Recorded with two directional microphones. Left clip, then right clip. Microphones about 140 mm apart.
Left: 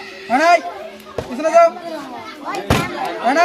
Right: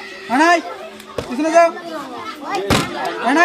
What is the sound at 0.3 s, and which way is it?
Speech, 25° left (ahead or behind).